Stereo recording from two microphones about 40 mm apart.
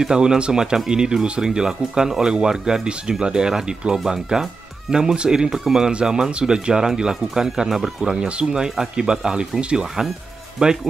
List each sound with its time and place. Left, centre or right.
0.0 s speech: centre
5.6 s speech: centre
5.9 s speech: centre